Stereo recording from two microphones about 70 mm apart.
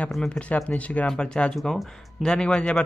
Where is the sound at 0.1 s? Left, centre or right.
Centre.